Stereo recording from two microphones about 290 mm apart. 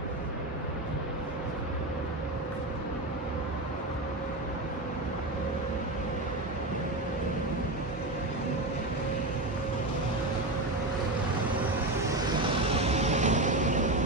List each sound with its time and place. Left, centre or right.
12.8 s vehicle: right